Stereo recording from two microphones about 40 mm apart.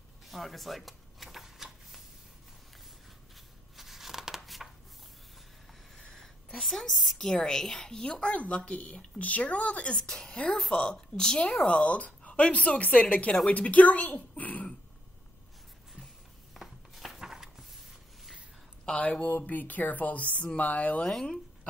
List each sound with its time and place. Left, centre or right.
0.3 s shuffling cards: centre
3.7 s a sound: centre
6.1 s a sound: centre
7.2 s a woman's voice: centre; by 9.9 s left
9.9 s a woman's voice: centre
11.6 s a woman's voice: left
16.5 s chopping: centre
18.9 s a woman's voice: left
19.4 s a woman's voice: left
21.1 s a woman's voice: centre